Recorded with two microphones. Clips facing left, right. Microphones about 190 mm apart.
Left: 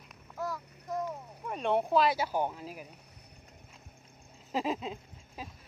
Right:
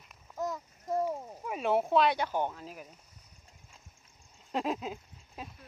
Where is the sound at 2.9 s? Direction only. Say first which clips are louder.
Left 3 dB; 65° left (ahead or behind).